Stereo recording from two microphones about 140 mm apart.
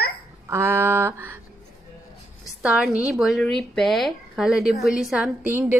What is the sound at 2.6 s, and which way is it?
Speech, 10° right (ahead or behind).